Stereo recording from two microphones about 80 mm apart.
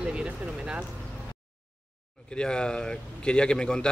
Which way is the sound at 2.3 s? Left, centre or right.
Centre.